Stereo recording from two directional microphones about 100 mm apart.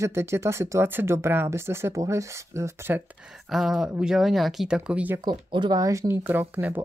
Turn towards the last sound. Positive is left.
turn(degrees=-20)  # may be behind; listen again after turning